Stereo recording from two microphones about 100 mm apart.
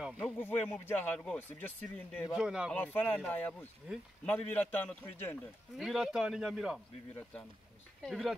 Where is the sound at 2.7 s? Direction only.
15° left (ahead or behind).